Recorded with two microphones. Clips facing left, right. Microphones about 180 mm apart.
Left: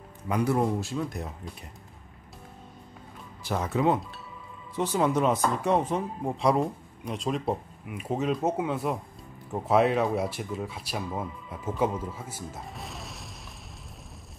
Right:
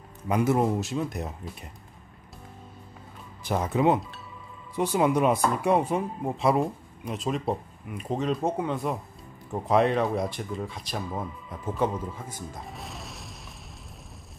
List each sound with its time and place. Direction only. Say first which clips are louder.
0.3 s speech: right 2 dB; 20° right (ahead or behind)
3.4 s speech: right 2 dB; 15° right (ahead or behind); by 13.4 s centre (ahead or behind)